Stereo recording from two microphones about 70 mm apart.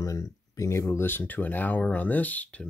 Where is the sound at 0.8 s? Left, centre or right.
Left.